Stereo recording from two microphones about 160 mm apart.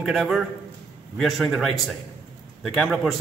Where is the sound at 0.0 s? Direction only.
Centre (ahead or behind).